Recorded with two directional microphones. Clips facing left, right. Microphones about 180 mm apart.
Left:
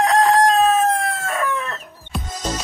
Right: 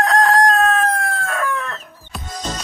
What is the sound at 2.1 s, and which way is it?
Music, centre (ahead or behind).